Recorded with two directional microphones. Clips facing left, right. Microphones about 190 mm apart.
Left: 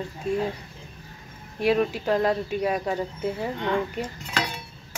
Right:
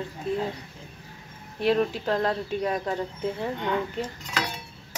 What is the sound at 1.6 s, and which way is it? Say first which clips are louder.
A woman's voice: left 1 dB; 10° left (ahead or behind).